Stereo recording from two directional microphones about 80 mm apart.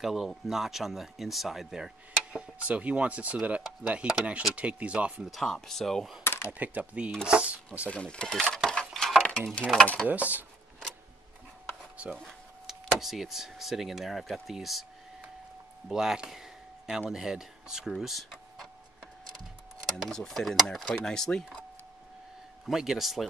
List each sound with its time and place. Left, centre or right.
0.0 s speech: centre
5.3 s speech: centre
6.2 s a sound: left
6.5 s speech: centre
7.9 s a sound: centre
9.6 s speech: centre
10.0 s speech: centre
12.2 s speech: centre
15.9 s a sound: centre
17.1 s speech: centre
19.9 s speech: centre
22.7 s speech: centre